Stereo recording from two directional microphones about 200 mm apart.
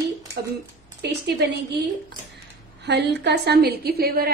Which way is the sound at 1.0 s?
55° right (ahead or behind).